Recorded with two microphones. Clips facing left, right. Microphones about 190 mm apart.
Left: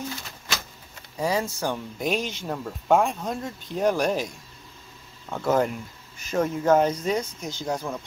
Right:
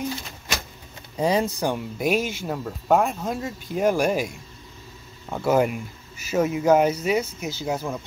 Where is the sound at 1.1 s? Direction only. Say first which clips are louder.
Right 4 dB; 20° right (ahead or behind).